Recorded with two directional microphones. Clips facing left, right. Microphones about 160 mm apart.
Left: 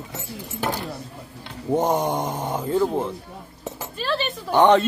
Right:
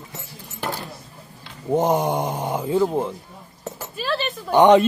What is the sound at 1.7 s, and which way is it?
A man's voice, 10° right (ahead or behind).